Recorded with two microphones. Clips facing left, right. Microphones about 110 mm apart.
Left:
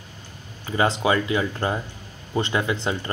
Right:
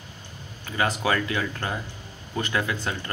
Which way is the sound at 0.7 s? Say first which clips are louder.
Left 4 dB; 25° left (ahead or behind).